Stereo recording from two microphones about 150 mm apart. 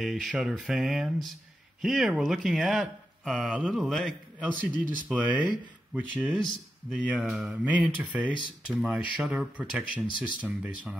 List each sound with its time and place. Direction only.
0.0 s speech: centre (ahead or behind)
10.0 s speech: 30° left (ahead or behind)
10.4 s speech: 10° right (ahead or behind)